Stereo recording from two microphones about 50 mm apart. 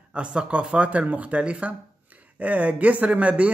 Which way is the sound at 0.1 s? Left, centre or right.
Right.